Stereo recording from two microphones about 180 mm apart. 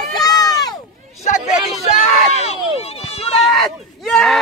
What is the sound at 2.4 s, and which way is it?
Speech, 35° left (ahead or behind).